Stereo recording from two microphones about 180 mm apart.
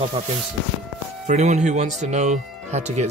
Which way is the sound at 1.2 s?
40° right (ahead or behind).